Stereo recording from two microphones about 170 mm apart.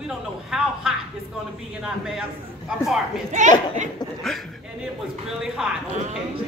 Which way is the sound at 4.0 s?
25° left (ahead or behind).